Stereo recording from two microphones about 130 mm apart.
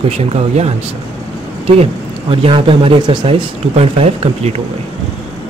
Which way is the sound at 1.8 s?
45° right (ahead or behind).